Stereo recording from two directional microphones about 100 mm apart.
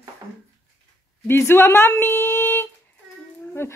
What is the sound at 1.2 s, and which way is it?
Speech, 25° left (ahead or behind).